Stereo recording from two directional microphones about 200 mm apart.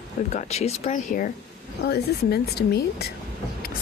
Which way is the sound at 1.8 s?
55° left (ahead or behind).